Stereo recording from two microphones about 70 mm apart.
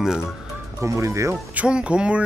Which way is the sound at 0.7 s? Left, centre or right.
Right.